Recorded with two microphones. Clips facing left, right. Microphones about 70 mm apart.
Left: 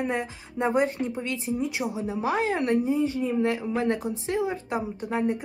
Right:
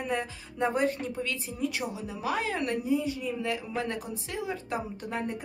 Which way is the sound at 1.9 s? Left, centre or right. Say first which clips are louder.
Left 5 dB; left.